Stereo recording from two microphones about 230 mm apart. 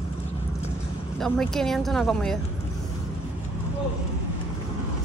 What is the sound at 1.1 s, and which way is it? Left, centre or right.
Speech, centre.